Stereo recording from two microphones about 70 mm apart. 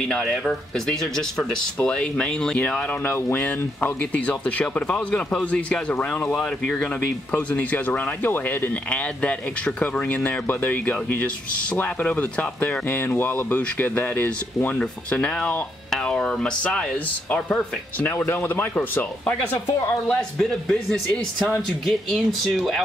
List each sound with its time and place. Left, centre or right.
0.2 s speech: centre
3.1 s speech: left
6.3 s speech: centre
7.3 s speech: left
18.0 s speech: left
20.1 s speech: centre